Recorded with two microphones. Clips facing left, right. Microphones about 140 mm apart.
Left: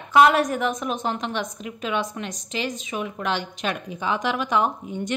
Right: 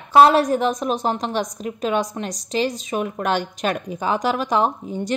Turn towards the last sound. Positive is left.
turn(degrees=-35)  # may be behind; listen again after turning